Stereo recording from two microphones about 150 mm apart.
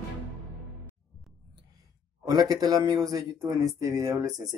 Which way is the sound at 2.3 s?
25° right (ahead or behind).